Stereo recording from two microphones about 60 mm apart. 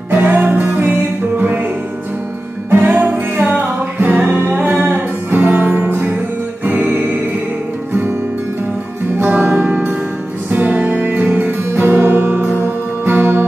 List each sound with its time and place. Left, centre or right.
0.1 s music: right
2.7 s music: right
9.2 s music: right